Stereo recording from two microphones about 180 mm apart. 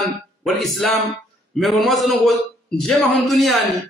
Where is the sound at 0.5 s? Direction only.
Centre (ahead or behind).